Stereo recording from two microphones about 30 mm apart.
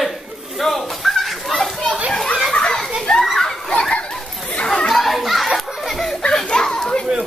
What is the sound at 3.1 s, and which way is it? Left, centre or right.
Children playing, left.